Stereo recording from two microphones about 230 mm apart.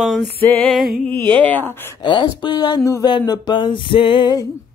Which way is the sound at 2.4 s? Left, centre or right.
Centre.